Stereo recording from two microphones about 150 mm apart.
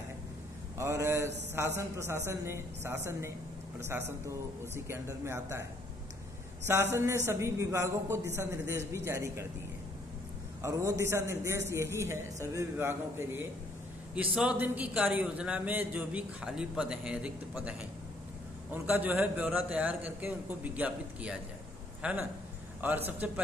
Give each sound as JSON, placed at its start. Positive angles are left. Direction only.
{"t": 0.7, "sound": "a man's voice", "side_deg": -20}
{"t": 4.7, "sound": "a man's voice", "side_deg": -15}
{"t": 6.6, "sound": "a man's voice", "side_deg": -15}
{"t": 10.6, "sound": "a man's voice", "side_deg": -20}